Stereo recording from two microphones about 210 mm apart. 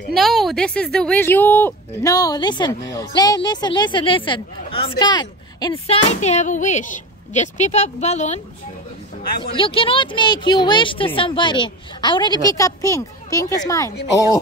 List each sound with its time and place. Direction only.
0.1 s speech: centre (ahead or behind); by 8.4 s 35° left (ahead or behind)
9.4 s speech: 25° left (ahead or behind)